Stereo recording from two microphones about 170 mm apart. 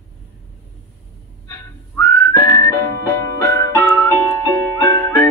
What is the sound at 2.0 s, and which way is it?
Whistling, 15° left (ahead or behind).